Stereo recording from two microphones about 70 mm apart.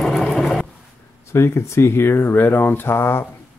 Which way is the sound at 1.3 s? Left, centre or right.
Left.